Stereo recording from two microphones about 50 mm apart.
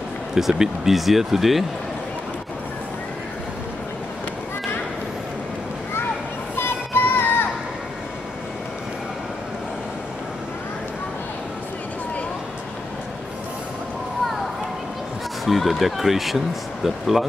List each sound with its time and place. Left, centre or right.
0.3 s speech: centre
6.5 s music: left
15.4 s speech: centre